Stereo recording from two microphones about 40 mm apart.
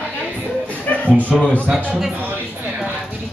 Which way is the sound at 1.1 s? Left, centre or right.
Right.